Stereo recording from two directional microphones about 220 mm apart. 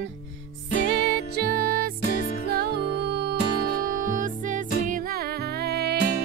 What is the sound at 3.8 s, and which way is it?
Music, 40° right (ahead or behind).